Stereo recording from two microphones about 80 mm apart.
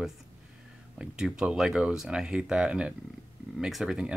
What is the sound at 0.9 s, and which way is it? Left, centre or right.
Speech, centre.